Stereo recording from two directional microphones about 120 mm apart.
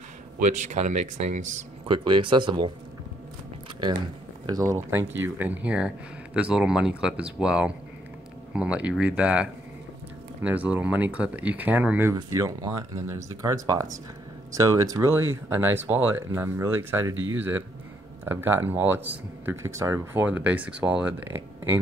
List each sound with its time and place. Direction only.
0.4 s speech: 90° right
1.9 s speech: 45° right (ahead or behind)
4.5 s speech: 30° right (ahead or behind)
12.2 s speech: 25° right (ahead or behind)